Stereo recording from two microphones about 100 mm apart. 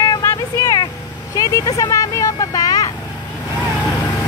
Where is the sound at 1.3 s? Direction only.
35° left (ahead or behind).